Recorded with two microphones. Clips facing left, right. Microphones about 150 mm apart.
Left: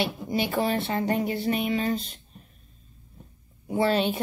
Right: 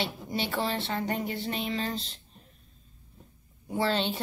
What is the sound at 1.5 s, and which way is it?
Speech, 10° left (ahead or behind).